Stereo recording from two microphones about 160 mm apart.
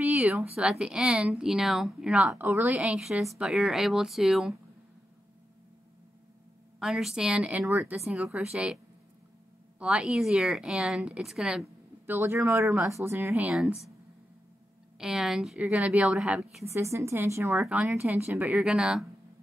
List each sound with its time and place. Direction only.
0.0 s a sound: 10° right (ahead or behind)
0.6 s speech: 5° right (ahead or behind)
6.8 s speech: centre (ahead or behind)
9.8 s speech: 5° right (ahead or behind)
11.6 s speech: 15° right (ahead or behind)
15.0 s speech: 5° right (ahead or behind)
16.6 s speech: 20° right (ahead or behind)
17.6 s speech: 5° right (ahead or behind)